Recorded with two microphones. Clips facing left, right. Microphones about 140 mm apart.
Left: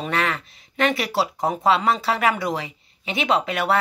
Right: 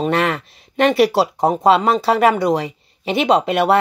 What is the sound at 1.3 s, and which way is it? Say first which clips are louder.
Speech: right 4 dB; 30° right (ahead or behind).